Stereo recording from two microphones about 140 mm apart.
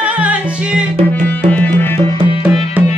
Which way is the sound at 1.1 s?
10° left (ahead or behind).